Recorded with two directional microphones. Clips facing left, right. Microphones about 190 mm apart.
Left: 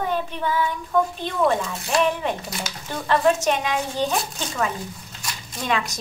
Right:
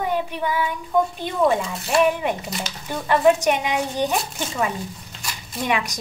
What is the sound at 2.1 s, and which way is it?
Speech, 10° right (ahead or behind).